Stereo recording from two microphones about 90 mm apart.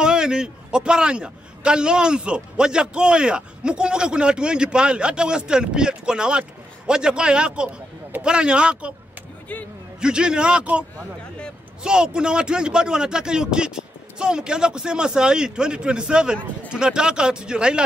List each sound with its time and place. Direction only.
0.0 s a man's voice: 10° right (ahead or behind)
9.5 s speech: 15° left (ahead or behind)
9.9 s a man's voice: 10° right (ahead or behind)